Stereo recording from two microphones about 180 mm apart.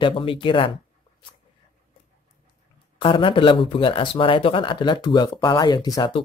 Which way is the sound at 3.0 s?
30° left (ahead or behind).